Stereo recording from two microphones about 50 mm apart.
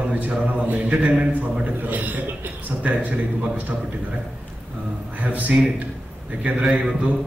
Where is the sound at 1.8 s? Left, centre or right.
Right.